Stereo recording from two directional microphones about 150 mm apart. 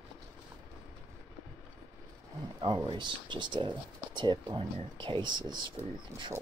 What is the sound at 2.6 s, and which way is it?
Speech, 30° right (ahead or behind).